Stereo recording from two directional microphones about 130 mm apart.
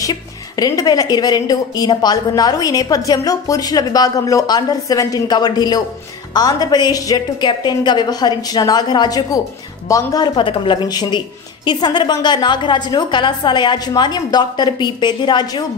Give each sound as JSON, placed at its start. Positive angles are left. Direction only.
{"t": 0.0, "sound": "a woman's voice", "side_deg": 30}